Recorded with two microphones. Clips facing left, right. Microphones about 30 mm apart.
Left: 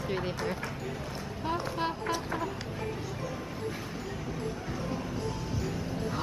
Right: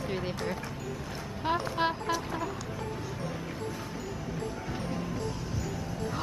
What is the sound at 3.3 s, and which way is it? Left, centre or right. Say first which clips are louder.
Music: even; centre.